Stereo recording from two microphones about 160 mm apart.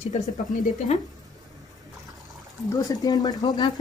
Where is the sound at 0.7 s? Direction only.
45° left (ahead or behind).